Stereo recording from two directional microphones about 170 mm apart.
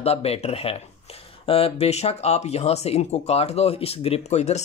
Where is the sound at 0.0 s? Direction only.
35° left (ahead or behind).